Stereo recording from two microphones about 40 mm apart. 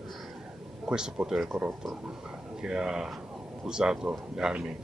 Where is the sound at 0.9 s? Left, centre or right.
Centre.